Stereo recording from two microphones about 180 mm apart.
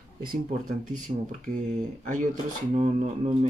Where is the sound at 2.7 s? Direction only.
40° right (ahead or behind).